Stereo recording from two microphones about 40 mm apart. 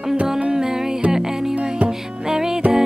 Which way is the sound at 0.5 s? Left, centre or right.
Centre.